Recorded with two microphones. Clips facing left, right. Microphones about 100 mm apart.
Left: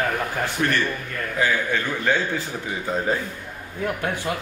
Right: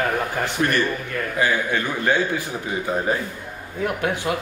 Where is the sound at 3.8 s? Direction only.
15° right (ahead or behind).